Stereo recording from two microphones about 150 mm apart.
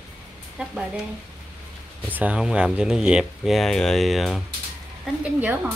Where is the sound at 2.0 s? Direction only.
10° right (ahead or behind).